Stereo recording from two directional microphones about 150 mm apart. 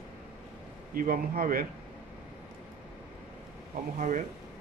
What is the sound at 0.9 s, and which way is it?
Speech, 70° right (ahead or behind).